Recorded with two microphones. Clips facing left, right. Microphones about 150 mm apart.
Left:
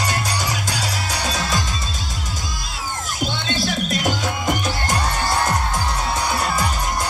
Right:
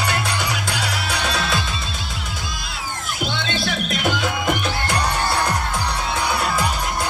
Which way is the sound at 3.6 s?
60° right (ahead or behind).